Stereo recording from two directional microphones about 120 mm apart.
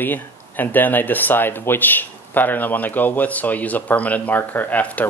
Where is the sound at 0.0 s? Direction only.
15° left (ahead or behind).